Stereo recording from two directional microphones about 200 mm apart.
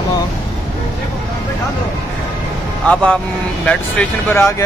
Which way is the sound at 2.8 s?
5° left (ahead or behind).